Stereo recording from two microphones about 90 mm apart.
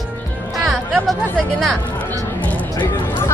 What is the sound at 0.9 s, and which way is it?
Speech, centre (ahead or behind).